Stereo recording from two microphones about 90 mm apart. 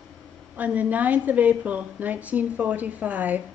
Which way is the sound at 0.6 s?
15° right (ahead or behind).